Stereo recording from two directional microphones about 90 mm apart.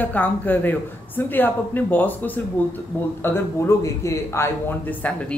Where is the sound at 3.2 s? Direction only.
30° left (ahead or behind).